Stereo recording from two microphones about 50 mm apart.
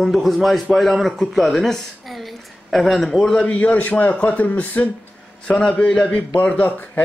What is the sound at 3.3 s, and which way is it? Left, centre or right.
A man's voice, left.